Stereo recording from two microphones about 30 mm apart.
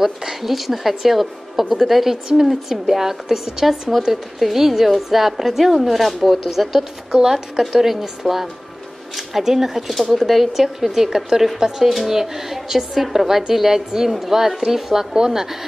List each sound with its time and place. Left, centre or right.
0.0 s a woman's voice: centre